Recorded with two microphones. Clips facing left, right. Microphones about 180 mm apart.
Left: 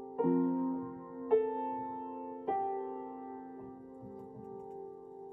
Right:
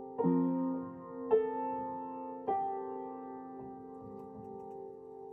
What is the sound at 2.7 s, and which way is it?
Music, 10° left (ahead or behind).